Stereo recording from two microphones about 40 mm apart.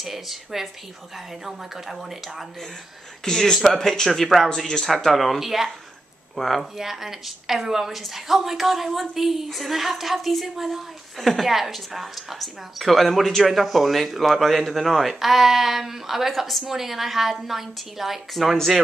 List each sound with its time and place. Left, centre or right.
0.0 s a woman's voice: centre
3.3 s a woman's voice: centre
6.8 s a woman's voice: centre